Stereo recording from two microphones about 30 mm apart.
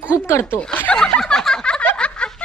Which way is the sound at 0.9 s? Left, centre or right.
Left.